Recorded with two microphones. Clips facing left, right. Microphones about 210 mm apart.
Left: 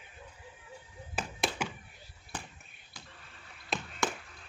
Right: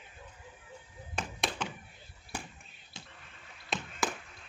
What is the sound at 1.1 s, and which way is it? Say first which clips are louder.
Tap: left 2 dB; 5° left (ahead or behind).